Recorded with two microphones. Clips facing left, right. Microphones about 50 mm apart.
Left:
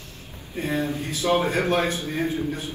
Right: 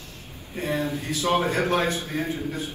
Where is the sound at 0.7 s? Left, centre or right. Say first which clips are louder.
Even; left.